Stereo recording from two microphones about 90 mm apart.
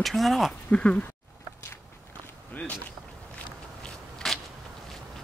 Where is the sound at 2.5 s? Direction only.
15° left (ahead or behind).